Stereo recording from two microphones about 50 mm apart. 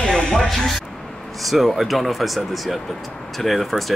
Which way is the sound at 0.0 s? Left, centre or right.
Centre.